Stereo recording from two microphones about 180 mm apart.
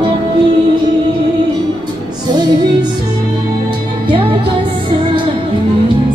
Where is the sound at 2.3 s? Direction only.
25° right (ahead or behind).